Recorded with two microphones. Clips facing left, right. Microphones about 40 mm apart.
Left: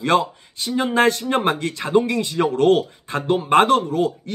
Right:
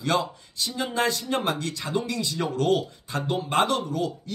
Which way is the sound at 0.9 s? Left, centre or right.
Left.